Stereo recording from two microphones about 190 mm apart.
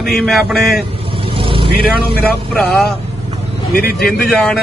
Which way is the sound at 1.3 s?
30° right (ahead or behind).